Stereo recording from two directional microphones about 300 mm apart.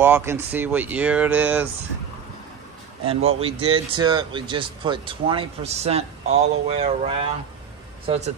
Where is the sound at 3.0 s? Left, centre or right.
Centre.